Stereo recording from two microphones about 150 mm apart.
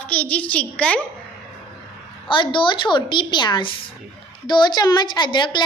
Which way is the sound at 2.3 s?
35° left (ahead or behind).